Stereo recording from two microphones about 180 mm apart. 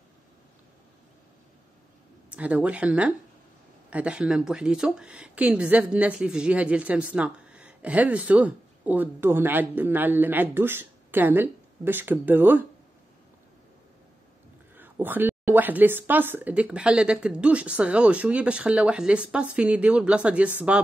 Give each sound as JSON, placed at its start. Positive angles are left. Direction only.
{"t": 2.3, "sound": "speech", "side_deg": -5}
{"t": 14.8, "sound": "speech", "side_deg": -10}